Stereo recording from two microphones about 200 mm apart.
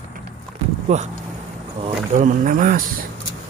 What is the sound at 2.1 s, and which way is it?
Speech, 40° right (ahead or behind).